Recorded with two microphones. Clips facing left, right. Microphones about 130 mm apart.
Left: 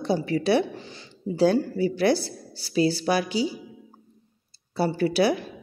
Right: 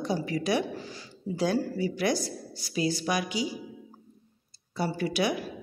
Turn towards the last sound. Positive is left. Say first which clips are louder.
# left 6 dB
turn(degrees=35)  # may be behind; listen again after turning